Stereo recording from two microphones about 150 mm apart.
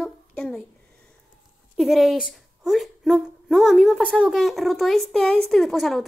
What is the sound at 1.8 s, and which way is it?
A woman's voice, centre (ahead or behind).